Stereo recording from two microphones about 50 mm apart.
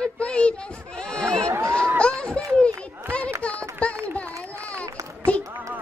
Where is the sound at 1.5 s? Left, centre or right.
Right.